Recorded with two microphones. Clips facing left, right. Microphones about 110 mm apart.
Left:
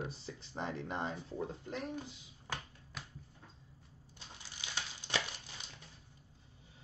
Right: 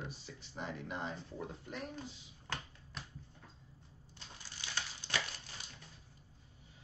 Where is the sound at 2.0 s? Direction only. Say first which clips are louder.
Left 1 dB; 10° left (ahead or behind).